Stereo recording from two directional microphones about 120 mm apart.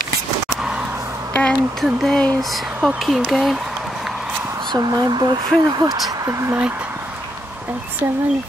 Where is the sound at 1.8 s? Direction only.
Centre (ahead or behind).